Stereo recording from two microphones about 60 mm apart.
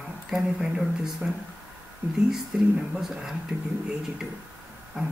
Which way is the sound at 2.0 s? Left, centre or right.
Right.